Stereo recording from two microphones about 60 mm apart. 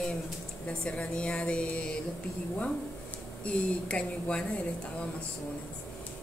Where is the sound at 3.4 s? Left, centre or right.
Centre.